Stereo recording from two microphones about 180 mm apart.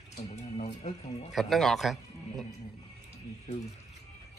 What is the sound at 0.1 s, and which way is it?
Speech, 40° left (ahead or behind).